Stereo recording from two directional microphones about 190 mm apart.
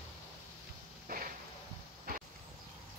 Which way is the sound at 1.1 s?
50° right (ahead or behind).